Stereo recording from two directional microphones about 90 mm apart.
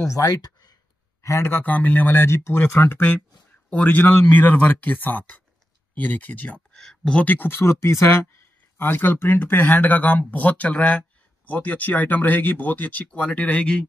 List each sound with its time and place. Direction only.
0.0 s speech: 40° left (ahead or behind)
1.2 s speech: 30° left (ahead or behind)
8.7 s speech: 25° left (ahead or behind)